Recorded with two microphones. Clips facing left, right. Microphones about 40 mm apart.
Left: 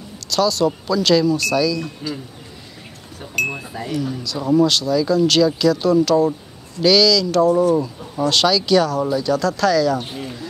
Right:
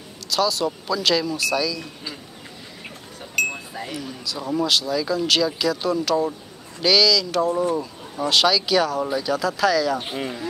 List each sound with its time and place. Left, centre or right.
0.3 s speech: centre
3.4 s speech: centre
3.8 s speech: centre
10.0 s speech: centre